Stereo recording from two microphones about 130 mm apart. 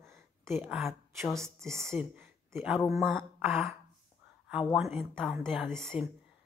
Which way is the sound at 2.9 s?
5° left (ahead or behind).